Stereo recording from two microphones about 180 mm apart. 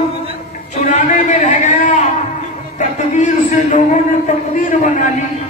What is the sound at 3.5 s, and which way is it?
A man's voice, 45° left (ahead or behind).